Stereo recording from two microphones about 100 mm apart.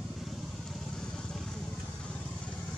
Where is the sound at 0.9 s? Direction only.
5° left (ahead or behind).